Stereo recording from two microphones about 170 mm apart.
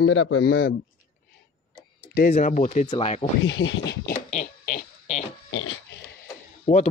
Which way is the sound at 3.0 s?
35° left (ahead or behind).